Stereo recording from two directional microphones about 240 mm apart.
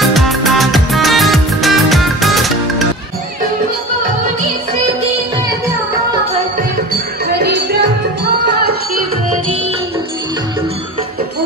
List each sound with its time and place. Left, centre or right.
0.0 s music: centre
7.2 s music: right